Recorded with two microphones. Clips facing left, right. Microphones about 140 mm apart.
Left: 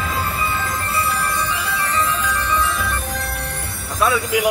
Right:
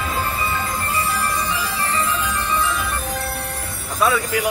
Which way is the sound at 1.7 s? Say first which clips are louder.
Left 3 dB; 35° right (ahead or behind).